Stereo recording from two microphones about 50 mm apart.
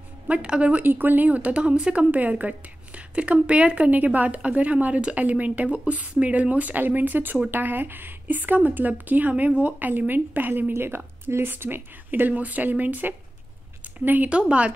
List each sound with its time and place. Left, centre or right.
0.3 s a woman's voice: right
0.8 s a woman's voice: right
10.7 s speech: right
14.3 s a woman's voice: right